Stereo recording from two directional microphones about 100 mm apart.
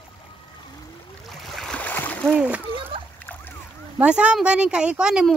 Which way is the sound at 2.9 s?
60° right (ahead or behind).